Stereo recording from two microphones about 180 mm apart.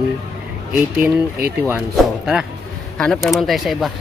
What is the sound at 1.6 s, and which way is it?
Speech, 10° right (ahead or behind).